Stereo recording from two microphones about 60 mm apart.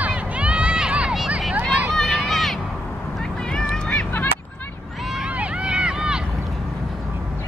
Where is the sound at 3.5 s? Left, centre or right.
Centre.